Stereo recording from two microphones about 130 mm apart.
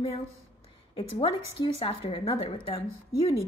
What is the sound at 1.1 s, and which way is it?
A woman's voice, 50° left (ahead or behind).